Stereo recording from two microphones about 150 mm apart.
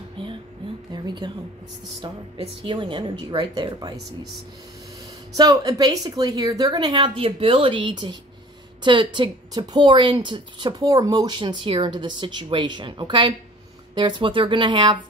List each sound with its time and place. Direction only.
0.2 s music: 35° right (ahead or behind)
0.9 s a sound: 30° right (ahead or behind)
2.0 s a woman's voice: 40° right (ahead or behind)
5.3 s a woman's voice: 25° right (ahead or behind)